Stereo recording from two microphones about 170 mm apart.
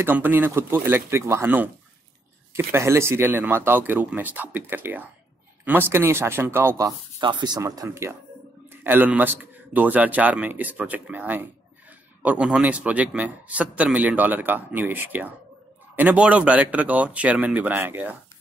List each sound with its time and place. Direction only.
0.0 s a man's voice: 10° right (ahead or behind)
7.2 s a man's voice: 25° right (ahead or behind); by 18.1 s 10° right (ahead or behind)